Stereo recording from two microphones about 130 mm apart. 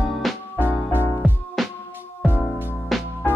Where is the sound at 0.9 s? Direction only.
20° left (ahead or behind).